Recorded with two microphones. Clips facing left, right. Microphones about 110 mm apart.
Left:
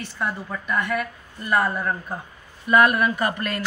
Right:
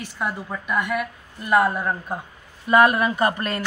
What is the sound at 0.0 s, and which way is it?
A woman's voice, 10° right (ahead or behind).